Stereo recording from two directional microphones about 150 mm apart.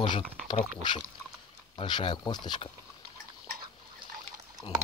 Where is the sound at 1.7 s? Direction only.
30° left (ahead or behind).